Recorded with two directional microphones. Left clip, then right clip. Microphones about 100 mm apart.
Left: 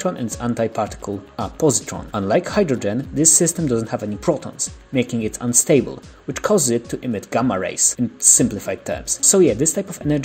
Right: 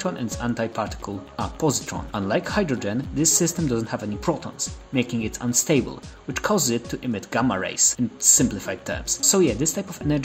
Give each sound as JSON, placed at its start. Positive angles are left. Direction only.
{"t": 0.0, "sound": "speech", "side_deg": 30}